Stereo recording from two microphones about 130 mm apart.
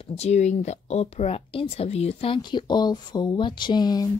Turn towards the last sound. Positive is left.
turn(degrees=30)  # may be behind; listen again after turning